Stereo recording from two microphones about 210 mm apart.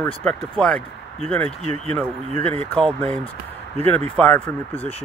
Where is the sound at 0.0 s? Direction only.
5° left (ahead or behind).